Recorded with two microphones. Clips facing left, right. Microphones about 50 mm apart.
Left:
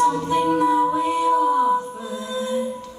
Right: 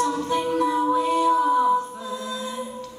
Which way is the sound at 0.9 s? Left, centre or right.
Left.